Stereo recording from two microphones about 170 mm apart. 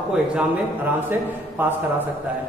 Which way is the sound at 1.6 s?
10° right (ahead or behind).